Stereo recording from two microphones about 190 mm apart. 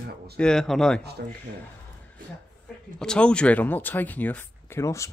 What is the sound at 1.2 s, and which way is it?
Speech, 55° right (ahead or behind).